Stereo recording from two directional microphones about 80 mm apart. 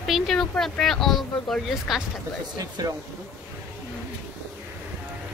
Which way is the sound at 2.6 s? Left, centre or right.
Right.